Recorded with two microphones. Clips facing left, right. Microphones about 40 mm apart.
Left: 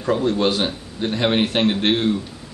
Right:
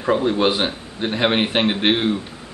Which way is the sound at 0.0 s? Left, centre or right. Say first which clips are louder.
Right 1 dB; centre.